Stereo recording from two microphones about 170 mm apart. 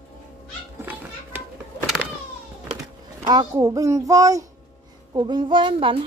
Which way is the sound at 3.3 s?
20° right (ahead or behind).